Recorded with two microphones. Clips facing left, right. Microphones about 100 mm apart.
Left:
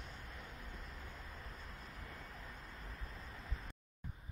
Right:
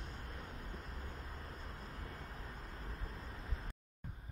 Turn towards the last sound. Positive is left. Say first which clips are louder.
# right 2 dB
turn(degrees=-35)  # may be behind; listen again after turning